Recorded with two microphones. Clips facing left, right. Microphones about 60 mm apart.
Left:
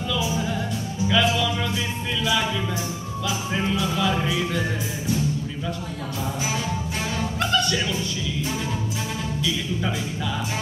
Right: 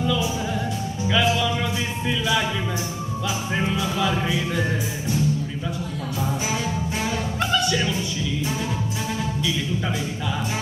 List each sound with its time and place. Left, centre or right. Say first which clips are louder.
0.0 s music: right 2 dB; centre
3.3 s music: even; centre
3.8 s music: even; centre
7.3 s music: even; centre